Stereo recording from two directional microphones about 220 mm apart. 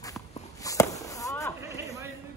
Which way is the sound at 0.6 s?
15° left (ahead or behind).